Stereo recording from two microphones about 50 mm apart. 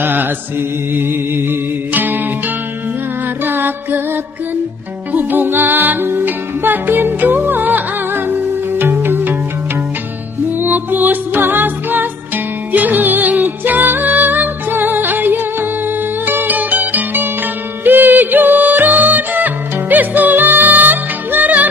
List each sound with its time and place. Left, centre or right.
0.0 s mantra: right
3.4 s music: right
5.1 s music: right
10.6 s music: right